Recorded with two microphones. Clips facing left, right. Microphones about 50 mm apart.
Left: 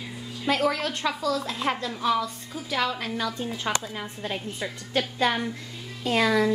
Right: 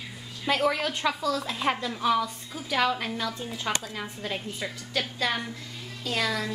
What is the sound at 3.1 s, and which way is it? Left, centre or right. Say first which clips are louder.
Speech: left 3 dB; centre.